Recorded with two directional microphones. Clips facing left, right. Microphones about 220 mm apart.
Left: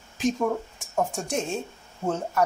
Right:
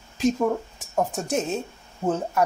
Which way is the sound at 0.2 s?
Centre (ahead or behind).